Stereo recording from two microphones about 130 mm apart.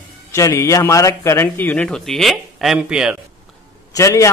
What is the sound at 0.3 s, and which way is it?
A man's voice, 20° left (ahead or behind).